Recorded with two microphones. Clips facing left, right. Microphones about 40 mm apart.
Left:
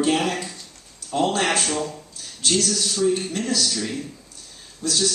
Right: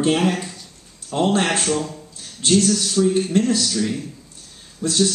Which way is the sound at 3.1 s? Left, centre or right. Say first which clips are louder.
Right 6 dB; right.